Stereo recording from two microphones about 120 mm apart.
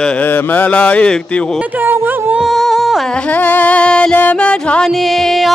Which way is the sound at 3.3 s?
15° left (ahead or behind).